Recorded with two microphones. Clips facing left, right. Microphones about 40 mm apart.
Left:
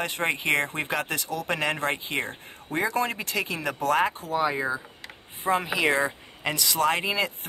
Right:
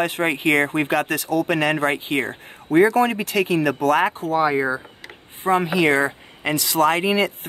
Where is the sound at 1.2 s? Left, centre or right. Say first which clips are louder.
Right 10 dB; centre.